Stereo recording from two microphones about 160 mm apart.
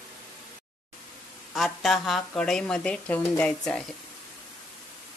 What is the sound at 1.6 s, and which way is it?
Speech, centre (ahead or behind).